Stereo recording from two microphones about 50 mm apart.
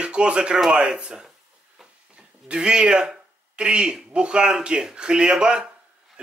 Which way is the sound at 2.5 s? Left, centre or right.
Centre.